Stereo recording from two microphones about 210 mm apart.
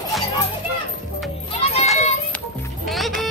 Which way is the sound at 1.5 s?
30° left (ahead or behind).